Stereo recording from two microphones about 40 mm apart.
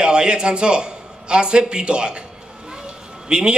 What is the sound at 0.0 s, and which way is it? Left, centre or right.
A man's voice, right.